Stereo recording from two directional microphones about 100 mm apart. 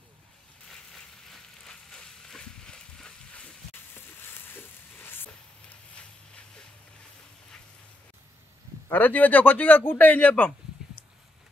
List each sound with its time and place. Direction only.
0.7 s a sound: 5° left (ahead or behind)
3.9 s frying: 20° left (ahead or behind)
8.8 s a man's voice: 15° left (ahead or behind)